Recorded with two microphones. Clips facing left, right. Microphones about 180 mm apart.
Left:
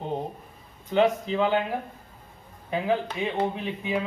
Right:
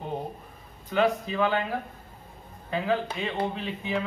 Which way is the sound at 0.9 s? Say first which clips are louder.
Left 2 dB; 20° left (ahead or behind).